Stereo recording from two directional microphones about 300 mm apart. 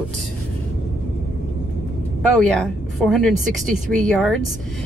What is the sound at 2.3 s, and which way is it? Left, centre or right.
A woman's voice, centre.